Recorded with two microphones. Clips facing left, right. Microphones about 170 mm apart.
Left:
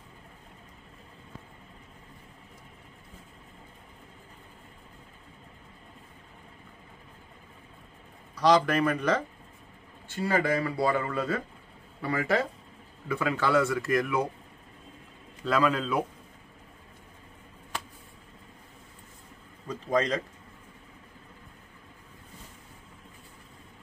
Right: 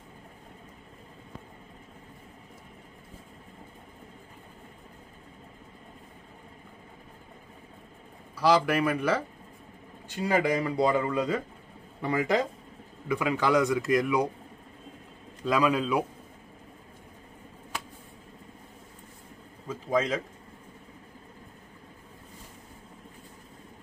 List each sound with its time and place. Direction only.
8.4 s speech: 10° right (ahead or behind)
15.4 s speech: 15° right (ahead or behind)
19.7 s a sound: 5° right (ahead or behind)